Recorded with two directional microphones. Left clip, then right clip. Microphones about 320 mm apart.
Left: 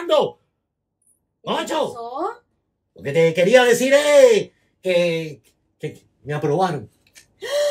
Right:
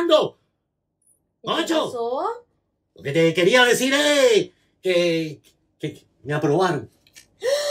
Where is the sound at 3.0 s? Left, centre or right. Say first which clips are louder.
Left 2 dB; centre.